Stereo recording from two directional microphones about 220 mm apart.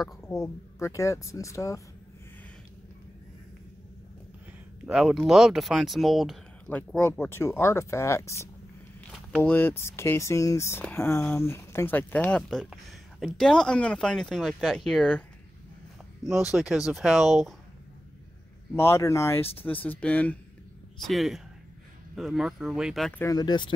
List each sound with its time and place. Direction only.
0.3 s speech: 15° left (ahead or behind)
4.8 s speech: centre (ahead or behind)
16.3 s speech: centre (ahead or behind)
18.8 s speech: 10° left (ahead or behind)
23.2 s speech: 20° left (ahead or behind)